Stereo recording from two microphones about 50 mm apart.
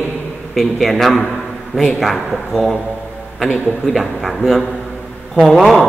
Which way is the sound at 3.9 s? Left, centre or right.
Centre.